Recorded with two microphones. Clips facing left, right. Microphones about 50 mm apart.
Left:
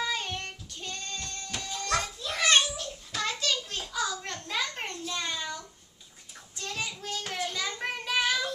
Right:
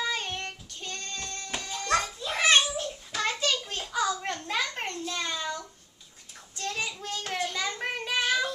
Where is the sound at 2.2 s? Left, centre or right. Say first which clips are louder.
Even; right.